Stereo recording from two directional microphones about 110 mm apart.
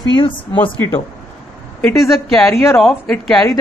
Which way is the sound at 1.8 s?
5° left (ahead or behind).